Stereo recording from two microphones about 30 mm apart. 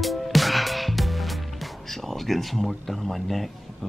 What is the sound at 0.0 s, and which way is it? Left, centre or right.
Music, centre.